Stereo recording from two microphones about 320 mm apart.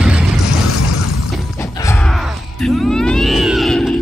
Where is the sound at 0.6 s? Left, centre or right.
Left.